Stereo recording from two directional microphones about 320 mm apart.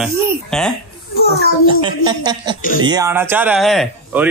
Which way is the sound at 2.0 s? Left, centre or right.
Centre.